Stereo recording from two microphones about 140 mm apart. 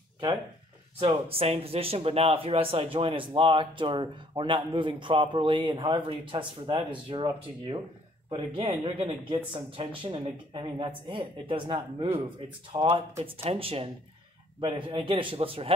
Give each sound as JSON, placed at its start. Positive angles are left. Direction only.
{"t": 0.9, "sound": "speech", "side_deg": -45}